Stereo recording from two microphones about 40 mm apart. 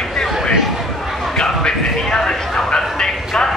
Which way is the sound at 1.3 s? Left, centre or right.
Centre.